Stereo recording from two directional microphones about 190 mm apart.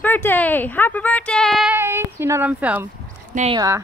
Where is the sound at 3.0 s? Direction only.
40° right (ahead or behind).